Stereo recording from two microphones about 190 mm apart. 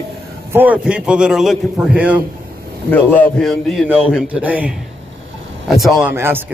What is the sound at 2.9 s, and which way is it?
A man's voice, 10° left (ahead or behind).